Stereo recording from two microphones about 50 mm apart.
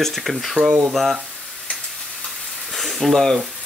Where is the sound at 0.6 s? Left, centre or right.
Right.